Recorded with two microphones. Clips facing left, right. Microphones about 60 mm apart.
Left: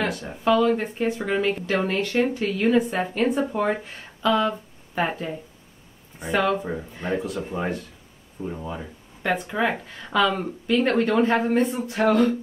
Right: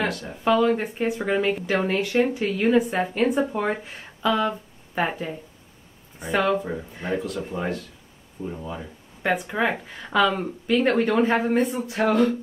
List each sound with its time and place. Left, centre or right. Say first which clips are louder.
0.1 s speech: left 1 dB; centre
0.4 s speech: even; centre
7.2 s speech: left 1 dB; centre
9.2 s speech: even; centre